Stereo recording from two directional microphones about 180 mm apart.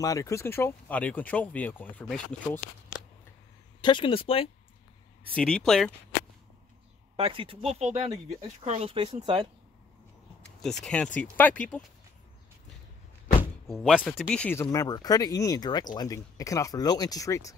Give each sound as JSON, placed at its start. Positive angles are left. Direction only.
{"t": 0.0, "sound": "speech", "side_deg": 15}
{"t": 3.8, "sound": "speech", "side_deg": 25}
{"t": 5.3, "sound": "speech", "side_deg": 5}
{"t": 7.2, "sound": "speech", "side_deg": -30}
{"t": 10.6, "sound": "speech", "side_deg": 0}
{"t": 13.7, "sound": "speech", "side_deg": 0}